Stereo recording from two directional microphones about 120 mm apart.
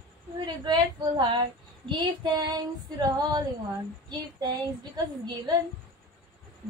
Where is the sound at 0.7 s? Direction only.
40° right (ahead or behind).